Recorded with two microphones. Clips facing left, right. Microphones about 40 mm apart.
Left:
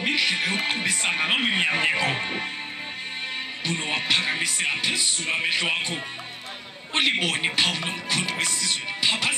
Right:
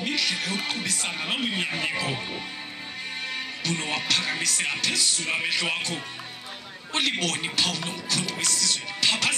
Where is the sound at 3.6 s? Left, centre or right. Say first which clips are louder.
Left 2 dB; centre.